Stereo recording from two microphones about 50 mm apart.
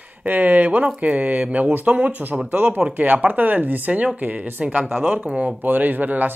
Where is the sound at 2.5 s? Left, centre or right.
Right.